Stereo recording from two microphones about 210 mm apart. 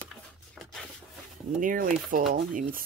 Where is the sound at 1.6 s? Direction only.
40° right (ahead or behind).